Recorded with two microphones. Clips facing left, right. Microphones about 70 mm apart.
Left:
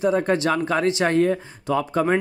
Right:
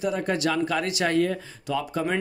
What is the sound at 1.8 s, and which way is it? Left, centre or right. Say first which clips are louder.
Speech: left 6 dB; left.